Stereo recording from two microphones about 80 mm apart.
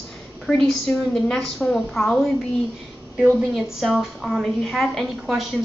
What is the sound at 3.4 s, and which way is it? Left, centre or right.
A woman's voice, centre.